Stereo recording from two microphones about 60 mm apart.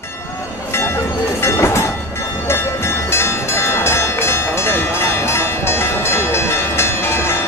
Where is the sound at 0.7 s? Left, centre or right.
Left.